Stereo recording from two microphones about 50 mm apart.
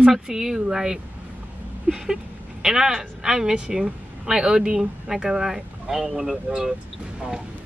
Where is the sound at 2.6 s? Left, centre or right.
Centre.